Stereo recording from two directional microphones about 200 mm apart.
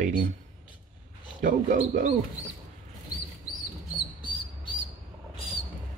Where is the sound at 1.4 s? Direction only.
40° right (ahead or behind).